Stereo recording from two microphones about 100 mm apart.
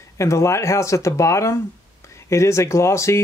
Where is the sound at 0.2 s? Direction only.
30° left (ahead or behind).